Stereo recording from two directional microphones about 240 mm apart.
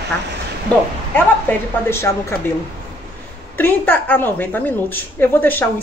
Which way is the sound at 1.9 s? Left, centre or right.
Centre.